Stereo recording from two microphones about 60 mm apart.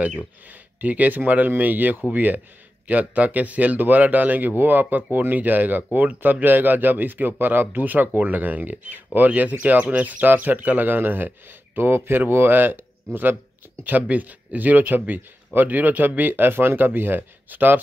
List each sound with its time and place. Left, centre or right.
0.5 s speech: right